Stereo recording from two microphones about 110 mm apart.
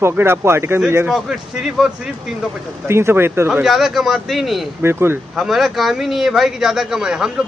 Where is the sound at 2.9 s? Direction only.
25° right (ahead or behind).